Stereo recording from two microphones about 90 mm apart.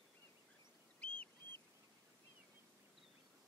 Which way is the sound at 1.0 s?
15° left (ahead or behind).